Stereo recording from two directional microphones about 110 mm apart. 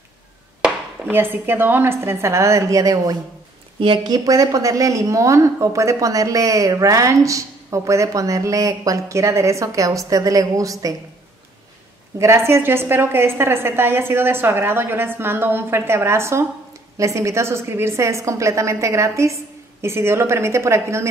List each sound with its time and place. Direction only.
1.1 s a woman's voice: 20° right (ahead or behind)
12.2 s a woman's voice: 25° right (ahead or behind)